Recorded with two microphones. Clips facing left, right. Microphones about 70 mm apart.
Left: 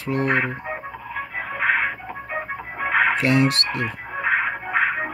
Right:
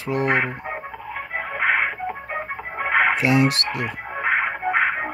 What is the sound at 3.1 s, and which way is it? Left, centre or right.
Speech, centre.